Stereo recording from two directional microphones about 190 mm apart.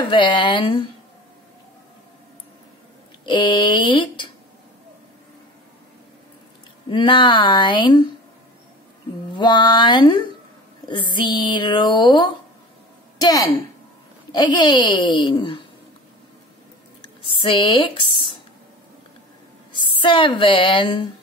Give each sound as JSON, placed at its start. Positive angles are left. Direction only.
{"t": 0.0, "sound": "a woman's voice", "side_deg": 25}
{"t": 3.3, "sound": "a woman's voice", "side_deg": 25}
{"t": 6.9, "sound": "a woman's voice", "side_deg": 25}
{"t": 9.3, "sound": "a woman's voice", "side_deg": 25}
{"t": 17.2, "sound": "speech", "side_deg": 25}
{"t": 19.9, "sound": "a woman's voice", "side_deg": 25}